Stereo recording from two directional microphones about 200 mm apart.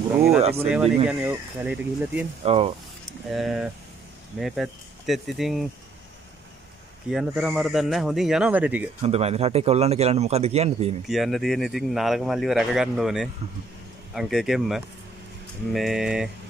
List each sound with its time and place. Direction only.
0.4 s a man's voice: 30° right (ahead or behind)
0.7 s speech: 5° right (ahead or behind)
2.4 s speech: 30° right (ahead or behind)
3.1 s speech: centre (ahead or behind)
7.1 s speech: centre (ahead or behind)
9.0 s a man's voice: 30° right (ahead or behind)
11.1 s speech: centre (ahead or behind)